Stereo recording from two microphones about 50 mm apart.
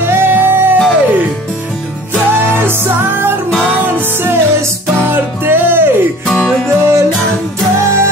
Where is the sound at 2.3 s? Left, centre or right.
Right.